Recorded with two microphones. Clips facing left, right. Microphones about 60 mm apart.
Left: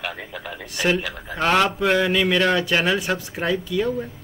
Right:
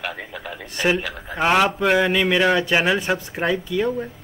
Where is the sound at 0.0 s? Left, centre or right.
Centre.